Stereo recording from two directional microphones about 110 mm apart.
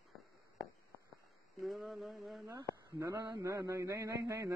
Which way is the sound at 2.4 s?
25° right (ahead or behind).